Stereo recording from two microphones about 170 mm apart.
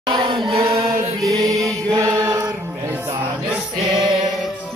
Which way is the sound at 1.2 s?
20° right (ahead or behind).